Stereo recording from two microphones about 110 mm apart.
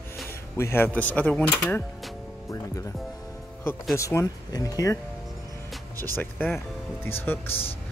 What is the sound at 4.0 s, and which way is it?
Speech, 30° left (ahead or behind).